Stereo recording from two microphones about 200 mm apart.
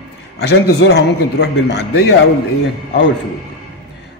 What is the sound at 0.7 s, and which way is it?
A man's voice, 55° left (ahead or behind).